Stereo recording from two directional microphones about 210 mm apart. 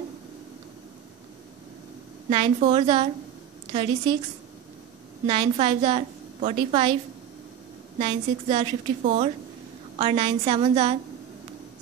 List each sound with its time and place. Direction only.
2.2 s a woman's voice: 25° right (ahead or behind)
5.2 s a woman's voice: 25° right (ahead or behind)
8.0 s a woman's voice: 25° right (ahead or behind)